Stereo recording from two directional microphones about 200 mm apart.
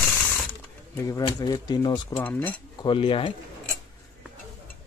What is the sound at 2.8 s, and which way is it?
Speech, 25° left (ahead or behind).